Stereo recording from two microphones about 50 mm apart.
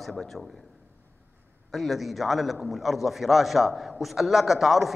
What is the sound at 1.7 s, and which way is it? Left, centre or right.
A man's voice, centre.